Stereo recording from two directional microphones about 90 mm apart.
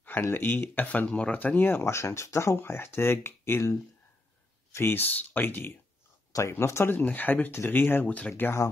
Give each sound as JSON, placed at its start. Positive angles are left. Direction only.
{"t": 0.0, "sound": "speech", "side_deg": 20}
{"t": 4.7, "sound": "speech", "side_deg": 25}
{"t": 7.0, "sound": "speech", "side_deg": 20}